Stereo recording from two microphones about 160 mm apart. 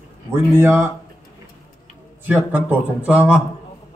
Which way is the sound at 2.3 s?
10° right (ahead or behind).